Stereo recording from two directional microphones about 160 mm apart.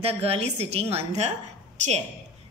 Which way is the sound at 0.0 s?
40° right (ahead or behind).